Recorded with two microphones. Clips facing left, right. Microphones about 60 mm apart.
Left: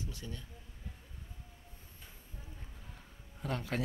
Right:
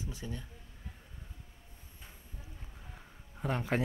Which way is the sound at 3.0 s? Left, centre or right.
Right.